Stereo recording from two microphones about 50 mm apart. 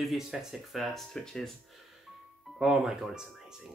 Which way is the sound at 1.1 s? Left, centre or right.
Centre.